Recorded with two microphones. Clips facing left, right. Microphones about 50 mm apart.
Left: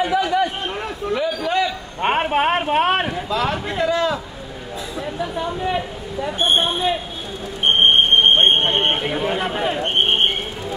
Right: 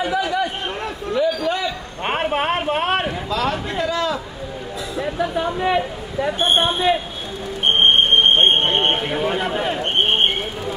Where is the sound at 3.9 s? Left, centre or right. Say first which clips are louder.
Left 2 dB; left.